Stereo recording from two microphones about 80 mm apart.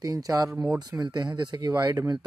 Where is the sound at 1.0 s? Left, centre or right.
Right.